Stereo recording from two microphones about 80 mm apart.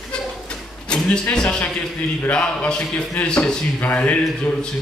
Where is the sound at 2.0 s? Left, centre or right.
Centre.